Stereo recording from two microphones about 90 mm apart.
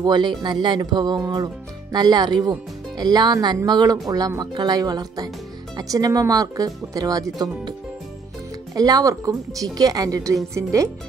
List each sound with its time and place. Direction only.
0.0 s speech: 55° right (ahead or behind)
8.7 s speech: 40° right (ahead or behind)